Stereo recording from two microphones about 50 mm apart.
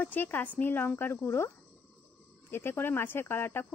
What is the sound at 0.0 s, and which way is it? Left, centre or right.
Speech, left.